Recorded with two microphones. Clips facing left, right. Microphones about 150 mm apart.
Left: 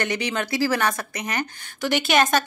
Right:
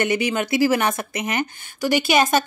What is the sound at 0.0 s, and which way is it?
A woman's voice, 10° right (ahead or behind).